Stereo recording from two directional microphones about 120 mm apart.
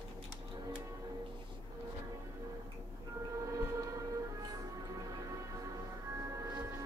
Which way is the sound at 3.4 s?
25° right (ahead or behind).